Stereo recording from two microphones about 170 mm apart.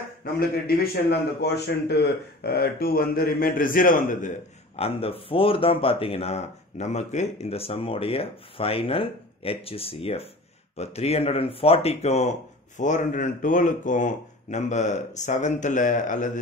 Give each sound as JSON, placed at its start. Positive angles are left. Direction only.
{"t": 0.2, "sound": "a man's voice", "side_deg": 60}
{"t": 4.7, "sound": "speech", "side_deg": 35}